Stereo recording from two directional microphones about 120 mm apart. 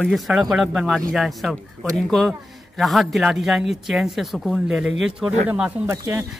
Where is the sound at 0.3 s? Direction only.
5° right (ahead or behind).